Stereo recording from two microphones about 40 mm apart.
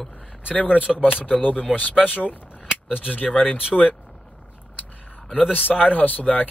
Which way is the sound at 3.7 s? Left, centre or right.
Centre.